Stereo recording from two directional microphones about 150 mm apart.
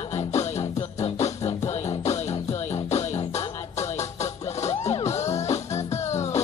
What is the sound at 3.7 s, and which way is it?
Music, 45° left (ahead or behind).